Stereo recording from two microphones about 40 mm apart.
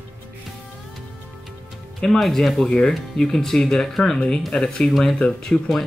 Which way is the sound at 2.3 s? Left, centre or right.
Centre.